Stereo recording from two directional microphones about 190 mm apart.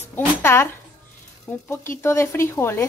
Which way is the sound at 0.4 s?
10° left (ahead or behind).